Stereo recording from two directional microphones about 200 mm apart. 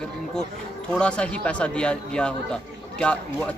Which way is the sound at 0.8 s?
5° left (ahead or behind).